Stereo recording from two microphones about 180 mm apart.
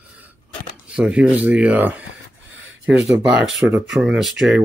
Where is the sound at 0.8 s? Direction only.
5° right (ahead or behind).